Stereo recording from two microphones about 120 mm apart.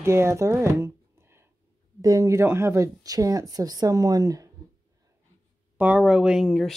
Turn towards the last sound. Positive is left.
turn(degrees=0)  # may be behind; listen again after turning